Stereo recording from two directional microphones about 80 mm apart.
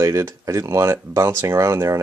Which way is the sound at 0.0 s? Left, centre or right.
Right.